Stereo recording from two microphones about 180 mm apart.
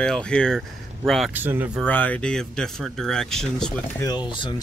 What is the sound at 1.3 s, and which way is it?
Speech, 10° right (ahead or behind).